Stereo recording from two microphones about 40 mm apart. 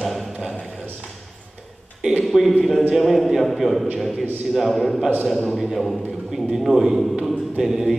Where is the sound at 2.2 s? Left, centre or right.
Centre.